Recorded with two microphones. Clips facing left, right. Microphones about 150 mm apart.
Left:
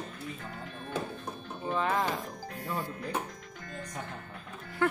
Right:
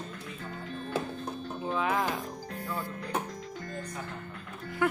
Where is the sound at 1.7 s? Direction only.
5° right (ahead or behind).